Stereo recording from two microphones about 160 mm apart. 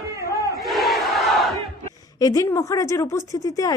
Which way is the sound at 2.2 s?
20° left (ahead or behind).